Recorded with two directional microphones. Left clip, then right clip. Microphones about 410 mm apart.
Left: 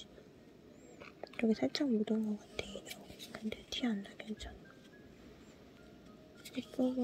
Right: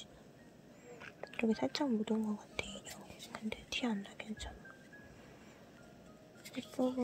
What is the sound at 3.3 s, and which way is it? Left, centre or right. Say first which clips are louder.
Speech: right 1 dB; centre.